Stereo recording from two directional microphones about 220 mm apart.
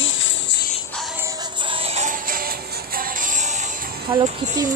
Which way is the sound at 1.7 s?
25° right (ahead or behind).